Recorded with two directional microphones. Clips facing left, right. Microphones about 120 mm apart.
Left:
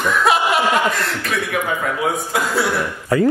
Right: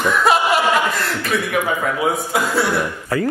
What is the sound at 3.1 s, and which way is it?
Speech, 20° left (ahead or behind).